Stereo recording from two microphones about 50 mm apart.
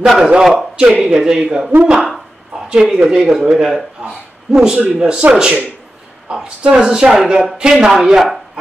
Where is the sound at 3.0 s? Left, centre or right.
Centre.